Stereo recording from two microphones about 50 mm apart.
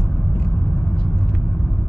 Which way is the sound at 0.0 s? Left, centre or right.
Centre.